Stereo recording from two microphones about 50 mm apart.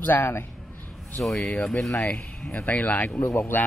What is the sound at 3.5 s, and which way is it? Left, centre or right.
Speech, left.